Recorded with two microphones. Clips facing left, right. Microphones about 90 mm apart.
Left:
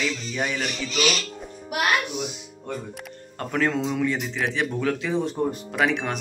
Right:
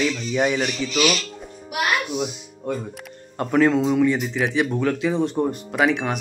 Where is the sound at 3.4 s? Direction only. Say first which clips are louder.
Right 6 dB; 10° right (ahead or behind).